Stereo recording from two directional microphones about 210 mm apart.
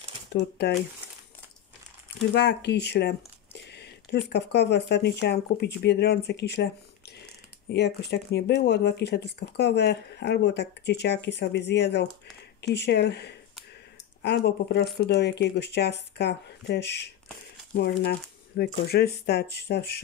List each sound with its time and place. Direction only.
0.3 s speech: 50° left (ahead or behind)
2.3 s a sound: 55° left (ahead or behind)
4.3 s speech: 55° left (ahead or behind)
7.7 s speech: 55° left (ahead or behind)